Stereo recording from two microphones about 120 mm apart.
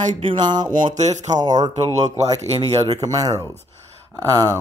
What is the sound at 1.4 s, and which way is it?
Speech, 35° right (ahead or behind).